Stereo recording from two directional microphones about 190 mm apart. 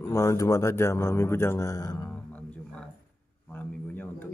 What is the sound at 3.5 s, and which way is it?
Speech, 10° left (ahead or behind).